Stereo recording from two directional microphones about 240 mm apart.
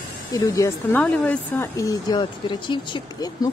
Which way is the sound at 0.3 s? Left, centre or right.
Centre.